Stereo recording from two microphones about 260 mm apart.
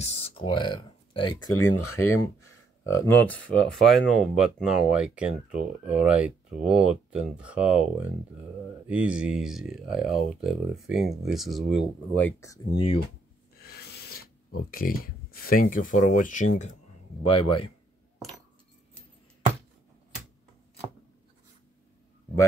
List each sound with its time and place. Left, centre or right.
0.0 s speech: left
13.7 s filing: left
14.6 s speech: left